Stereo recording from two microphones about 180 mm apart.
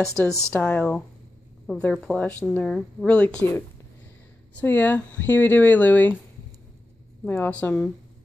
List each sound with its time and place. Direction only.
0.3 s speech: 10° left (ahead or behind)
7.2 s speech: 10° left (ahead or behind)